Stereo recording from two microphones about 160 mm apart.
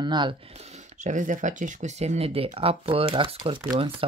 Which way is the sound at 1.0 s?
50° right (ahead or behind).